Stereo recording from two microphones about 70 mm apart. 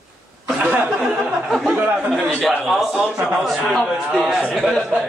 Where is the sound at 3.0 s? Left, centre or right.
Centre.